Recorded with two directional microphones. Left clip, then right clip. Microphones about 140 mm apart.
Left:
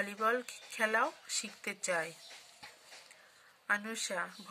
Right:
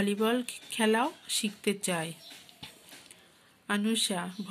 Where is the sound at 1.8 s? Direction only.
40° right (ahead or behind).